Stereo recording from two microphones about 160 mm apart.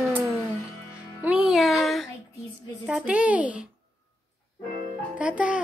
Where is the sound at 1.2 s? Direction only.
5° right (ahead or behind).